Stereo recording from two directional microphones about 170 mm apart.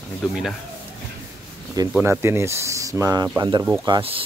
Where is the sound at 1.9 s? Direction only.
15° right (ahead or behind).